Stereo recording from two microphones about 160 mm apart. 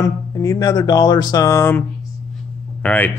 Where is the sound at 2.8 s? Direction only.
10° left (ahead or behind).